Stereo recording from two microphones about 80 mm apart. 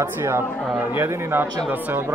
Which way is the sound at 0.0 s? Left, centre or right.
Right.